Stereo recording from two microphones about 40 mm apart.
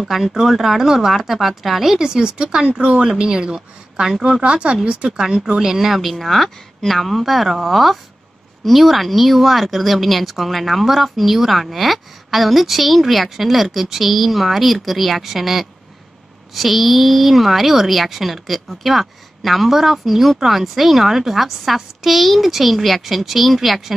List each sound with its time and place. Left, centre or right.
0.0 s a woman's voice: centre